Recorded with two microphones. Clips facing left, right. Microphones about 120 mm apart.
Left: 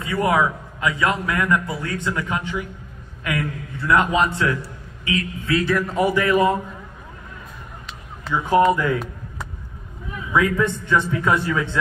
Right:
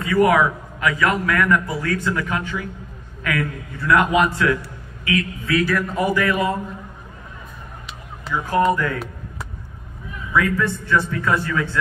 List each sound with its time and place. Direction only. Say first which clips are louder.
0.0 s a man's voice: right 3 dB; 25° left (ahead or behind)
8.7 s a man's voice: left 2 dB; 20° left (ahead or behind)
10.3 s a man's voice: left 1 dB; 20° left (ahead or behind)